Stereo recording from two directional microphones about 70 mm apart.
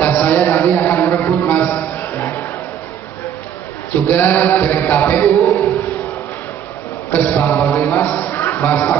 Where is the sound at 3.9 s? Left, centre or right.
Left.